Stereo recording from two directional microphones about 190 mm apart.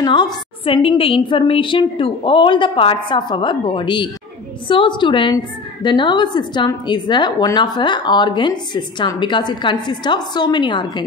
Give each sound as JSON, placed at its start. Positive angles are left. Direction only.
{"t": 0.0, "sound": "a woman's voice", "side_deg": 20}